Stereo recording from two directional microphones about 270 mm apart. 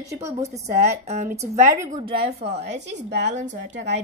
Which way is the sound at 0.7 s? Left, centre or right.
Right.